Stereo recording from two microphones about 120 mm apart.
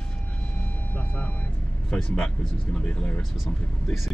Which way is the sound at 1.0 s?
10° left (ahead or behind).